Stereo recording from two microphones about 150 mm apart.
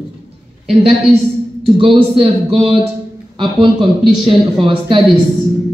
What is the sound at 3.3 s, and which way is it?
A woman's voice, 35° right (ahead or behind).